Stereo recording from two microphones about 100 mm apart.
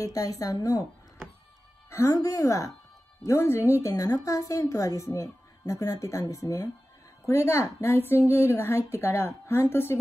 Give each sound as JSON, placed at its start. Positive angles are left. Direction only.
{"t": 0.0, "sound": "speech", "side_deg": 35}
{"t": 1.9, "sound": "a woman's voice", "side_deg": 30}